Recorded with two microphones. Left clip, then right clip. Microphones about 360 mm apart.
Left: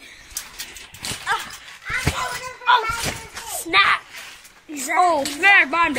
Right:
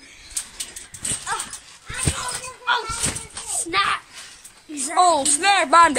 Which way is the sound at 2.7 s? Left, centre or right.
Centre.